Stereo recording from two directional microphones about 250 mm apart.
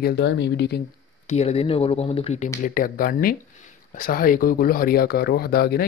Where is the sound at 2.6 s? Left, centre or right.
Left.